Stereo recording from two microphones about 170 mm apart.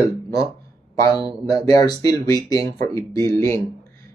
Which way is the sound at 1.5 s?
20° left (ahead or behind).